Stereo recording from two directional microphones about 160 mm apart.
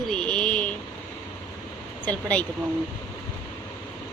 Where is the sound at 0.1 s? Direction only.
5° left (ahead or behind).